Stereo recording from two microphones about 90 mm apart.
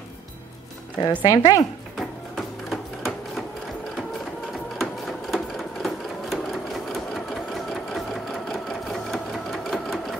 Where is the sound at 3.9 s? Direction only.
Centre (ahead or behind).